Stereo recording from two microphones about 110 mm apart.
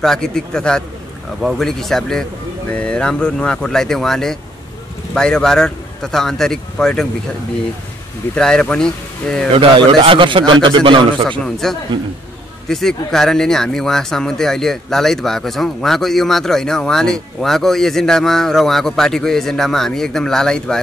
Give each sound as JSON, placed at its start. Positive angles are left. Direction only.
{"t": 0.0, "sound": "speech", "side_deg": 5}
{"t": 8.4, "sound": "speech", "side_deg": 5}
{"t": 9.5, "sound": "a man's voice", "side_deg": -55}
{"t": 11.2, "sound": "speech", "side_deg": 5}